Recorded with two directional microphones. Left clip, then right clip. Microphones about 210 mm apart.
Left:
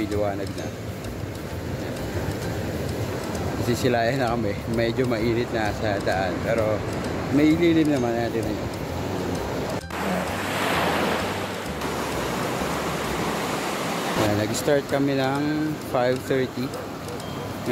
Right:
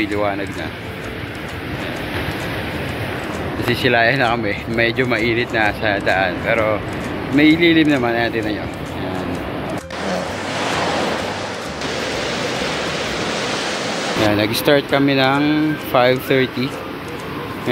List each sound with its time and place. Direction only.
3.7 s speech: 10° left (ahead or behind)
10.6 s waves: 15° right (ahead or behind)
14.4 s speech: 5° right (ahead or behind)